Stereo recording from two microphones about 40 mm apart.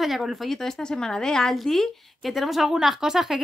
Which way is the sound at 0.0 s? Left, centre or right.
Centre.